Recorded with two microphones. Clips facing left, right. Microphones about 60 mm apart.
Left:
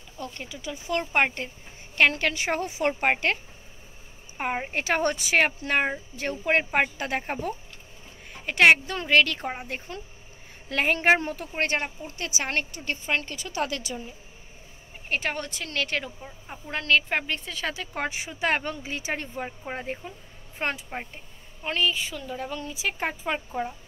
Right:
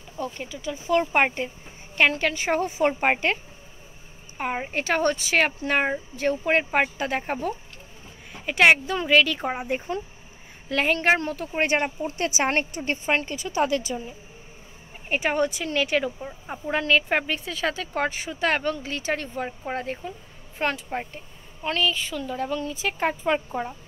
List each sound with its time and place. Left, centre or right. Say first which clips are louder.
0.2 s speech: right 5 dB; centre
0.5 s speech: right 4 dB; centre
0.9 s speech: right 4 dB; centre
4.4 s speech: right 1 dB; centre
9.5 s speech: right 7 dB; centre
10.7 s speech: even; centre
11.5 s speech: right 5 dB; centre
12.2 s a woman's voice: right 5 dB; right
13.4 s speech: right 6 dB; centre
15.0 s speech: right 6 dB; centre
16.3 s a woman's voice: right 8 dB; right
16.7 s a woman's voice: right 2 dB; centre
20.9 s speech: right 5 dB; centre